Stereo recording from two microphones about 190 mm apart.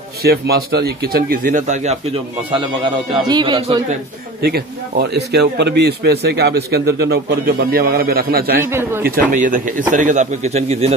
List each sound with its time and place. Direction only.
0.2 s speech: 55° right (ahead or behind); by 2.0 s 40° right (ahead or behind)
2.5 s speech: 25° right (ahead or behind)
4.4 s a man's voice: 55° right (ahead or behind)
8.6 s speech: 15° right (ahead or behind)
9.0 s a man's voice: 45° right (ahead or behind)